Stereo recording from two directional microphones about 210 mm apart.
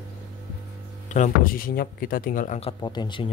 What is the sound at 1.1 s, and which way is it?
Speech, 40° left (ahead or behind).